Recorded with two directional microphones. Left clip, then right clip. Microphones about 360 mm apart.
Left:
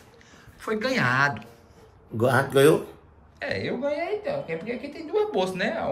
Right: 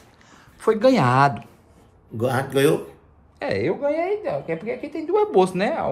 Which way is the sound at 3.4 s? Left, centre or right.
Centre.